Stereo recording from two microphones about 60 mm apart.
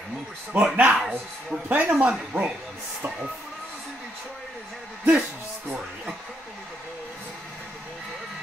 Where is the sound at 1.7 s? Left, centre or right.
Right.